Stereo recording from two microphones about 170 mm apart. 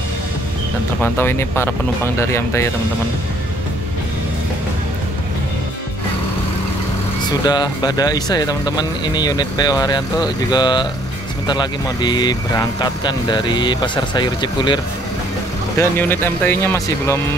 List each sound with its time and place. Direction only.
1.0 s speech: 15° left (ahead or behind)
7.4 s speech: 25° left (ahead or behind)
15.8 s speech: 10° left (ahead or behind)